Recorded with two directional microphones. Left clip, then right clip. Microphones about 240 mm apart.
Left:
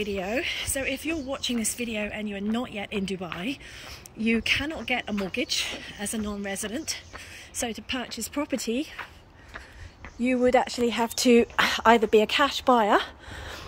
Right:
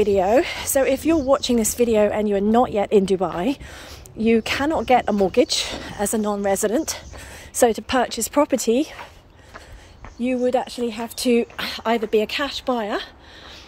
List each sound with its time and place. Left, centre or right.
0.0 s speech: centre
10.4 s a woman's voice: centre